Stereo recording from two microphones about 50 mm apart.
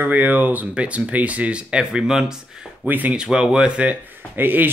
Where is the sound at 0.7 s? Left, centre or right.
Right.